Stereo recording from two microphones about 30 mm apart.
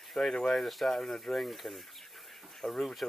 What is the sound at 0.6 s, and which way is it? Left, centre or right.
Speech, centre.